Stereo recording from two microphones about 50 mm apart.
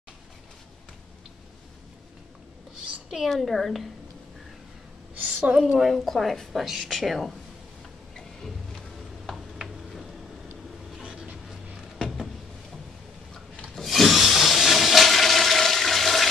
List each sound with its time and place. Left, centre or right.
3.1 s a woman's voice: centre
5.1 s a sound: right
5.6 s a woman's voice: centre
8.2 s music: centre
11.0 s vehicle: centre
13.7 s toilet flush: centre